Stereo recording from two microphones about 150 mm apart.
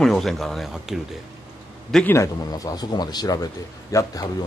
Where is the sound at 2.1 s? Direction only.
25° left (ahead or behind).